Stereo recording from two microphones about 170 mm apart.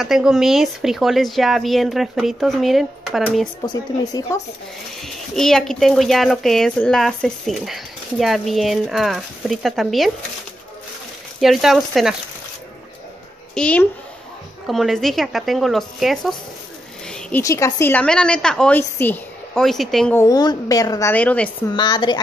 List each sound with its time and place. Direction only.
0.0 s speech: 5° right (ahead or behind)
3.6 s a woman's voice: 20° left (ahead or behind)
5.0 s speech: centre (ahead or behind)
11.4 s speech: centre (ahead or behind)
13.6 s a woman's voice: 5° left (ahead or behind)
17.4 s a woman's voice: 20° left (ahead or behind); by 20.2 s centre (ahead or behind)
20.2 s a woman's voice: 20° left (ahead or behind)
21.7 s a woman's voice: 25° left (ahead or behind)